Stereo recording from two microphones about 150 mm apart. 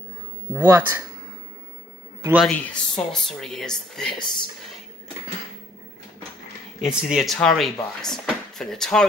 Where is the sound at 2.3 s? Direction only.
5° left (ahead or behind).